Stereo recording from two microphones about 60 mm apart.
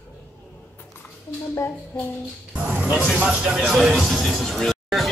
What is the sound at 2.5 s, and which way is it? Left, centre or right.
Speech, right.